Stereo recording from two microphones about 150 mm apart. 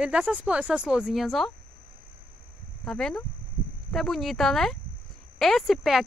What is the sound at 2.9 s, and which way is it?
Speech, 5° left (ahead or behind).